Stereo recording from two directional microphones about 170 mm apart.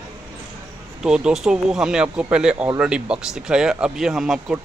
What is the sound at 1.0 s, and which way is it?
Speech, 5° right (ahead or behind).